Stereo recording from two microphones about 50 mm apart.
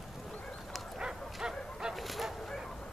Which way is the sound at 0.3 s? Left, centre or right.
Left.